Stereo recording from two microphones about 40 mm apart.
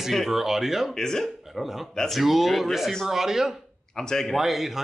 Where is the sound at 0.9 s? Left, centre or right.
Centre.